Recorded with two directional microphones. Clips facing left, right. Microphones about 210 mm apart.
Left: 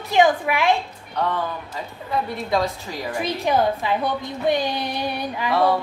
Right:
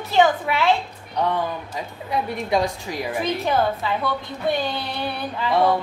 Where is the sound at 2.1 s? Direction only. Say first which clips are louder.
Right 1 dB; 15° right (ahead or behind).